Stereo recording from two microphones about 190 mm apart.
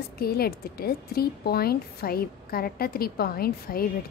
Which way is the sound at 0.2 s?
55° left (ahead or behind).